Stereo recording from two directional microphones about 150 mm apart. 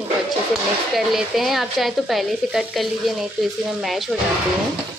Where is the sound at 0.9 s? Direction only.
Centre (ahead or behind).